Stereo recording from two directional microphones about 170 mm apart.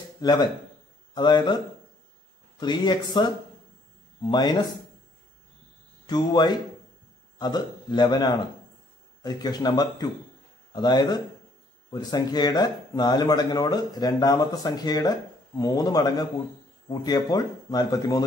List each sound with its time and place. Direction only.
0.2 s speech: 25° left (ahead or behind)
6.0 s speech: 25° left (ahead or behind)